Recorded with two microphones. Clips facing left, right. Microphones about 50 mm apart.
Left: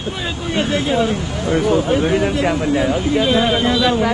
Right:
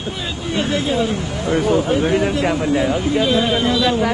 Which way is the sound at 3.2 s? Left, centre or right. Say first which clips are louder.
Left 2 dB; left.